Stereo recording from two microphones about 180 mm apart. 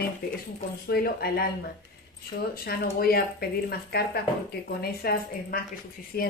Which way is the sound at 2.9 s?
55° left (ahead or behind).